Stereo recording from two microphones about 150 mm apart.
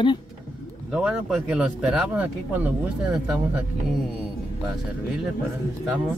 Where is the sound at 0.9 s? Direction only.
5° right (ahead or behind).